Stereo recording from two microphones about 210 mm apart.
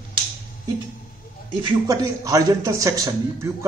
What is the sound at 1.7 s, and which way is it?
A man's voice, 15° right (ahead or behind).